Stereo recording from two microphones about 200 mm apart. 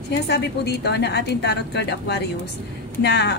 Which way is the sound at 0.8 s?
55° left (ahead or behind).